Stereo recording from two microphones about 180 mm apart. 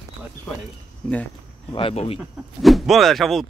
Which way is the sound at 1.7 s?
30° left (ahead or behind).